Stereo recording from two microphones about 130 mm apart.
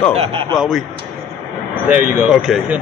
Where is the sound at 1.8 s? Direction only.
5° right (ahead or behind).